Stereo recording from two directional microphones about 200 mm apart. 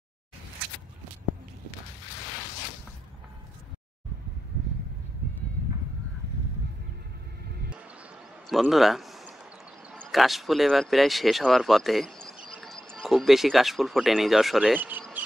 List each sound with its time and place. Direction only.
7.4 s music: 55° right (ahead or behind)
8.5 s speech: centre (ahead or behind)